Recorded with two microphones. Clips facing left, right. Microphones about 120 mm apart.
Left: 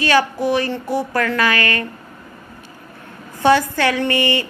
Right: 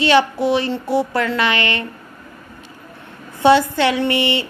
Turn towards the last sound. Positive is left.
turn(degrees=-20)  # may be behind; listen again after turning